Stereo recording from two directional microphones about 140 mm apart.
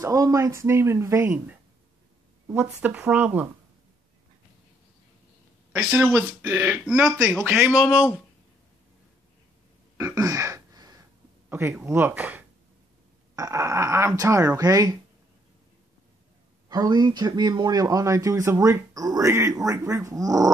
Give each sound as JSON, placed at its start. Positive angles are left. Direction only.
{"t": 0.0, "sound": "speech", "side_deg": -25}
{"t": 2.4, "sound": "speech", "side_deg": -15}
{"t": 5.7, "sound": "speech", "side_deg": -10}
{"t": 9.9, "sound": "a sound", "side_deg": -20}
{"t": 11.4, "sound": "speech", "side_deg": -15}
{"t": 16.6, "sound": "speech", "side_deg": -25}